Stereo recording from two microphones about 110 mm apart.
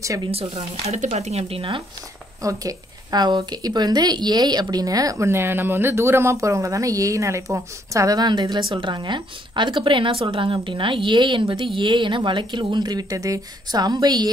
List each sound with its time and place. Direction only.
0.3 s speech: 65° right (ahead or behind)
2.4 s a woman's voice: 35° right (ahead or behind)